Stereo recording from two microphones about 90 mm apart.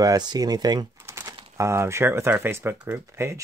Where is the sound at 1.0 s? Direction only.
25° right (ahead or behind).